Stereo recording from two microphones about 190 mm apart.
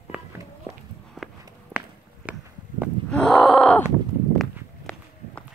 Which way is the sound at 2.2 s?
5° right (ahead or behind).